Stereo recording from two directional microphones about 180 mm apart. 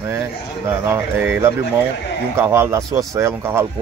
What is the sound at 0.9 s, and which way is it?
Speech, 10° right (ahead or behind).